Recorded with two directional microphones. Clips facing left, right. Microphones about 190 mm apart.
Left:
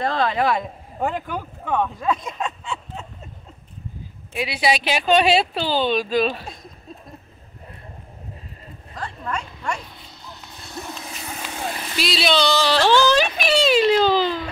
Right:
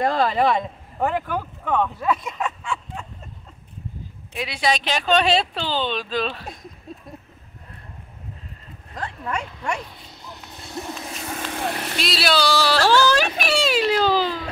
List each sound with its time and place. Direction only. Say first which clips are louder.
0.0 s a child's voice: right 2 dB; 10° right (ahead or behind)
1.0 s speech: right 2 dB; 15° left (ahead or behind)
4.3 s speech: left 2 dB; 5° left (ahead or behind)
8.9 s a sound: right 1 dB; 10° right (ahead or behind)
11.2 s vehicle: right 3 dB; 50° right (ahead or behind)
12.0 s a sound: left 2 dB; centre (ahead or behind)
13.1 s a child's voice: left 2 dB; 5° right (ahead or behind)